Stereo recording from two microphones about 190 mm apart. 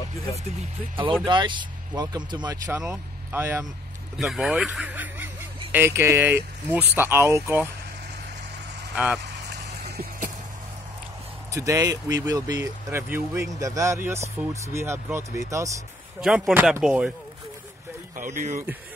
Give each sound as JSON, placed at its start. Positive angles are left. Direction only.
{"t": 1.2, "sound": "speech", "side_deg": -25}
{"t": 8.9, "sound": "speech", "side_deg": -5}
{"t": 11.5, "sound": "speech", "side_deg": -15}
{"t": 16.2, "sound": "speech", "side_deg": -5}
{"t": 18.1, "sound": "speech", "side_deg": -40}